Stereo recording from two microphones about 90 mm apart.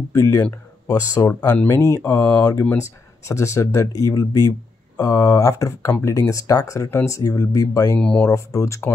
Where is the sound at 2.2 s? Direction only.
20° left (ahead or behind).